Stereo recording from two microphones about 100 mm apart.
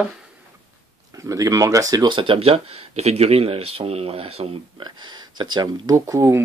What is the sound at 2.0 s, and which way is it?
Speech, 55° right (ahead or behind).